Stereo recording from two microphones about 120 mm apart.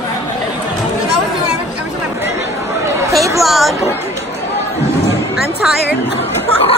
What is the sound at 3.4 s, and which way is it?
Speech, centre (ahead or behind).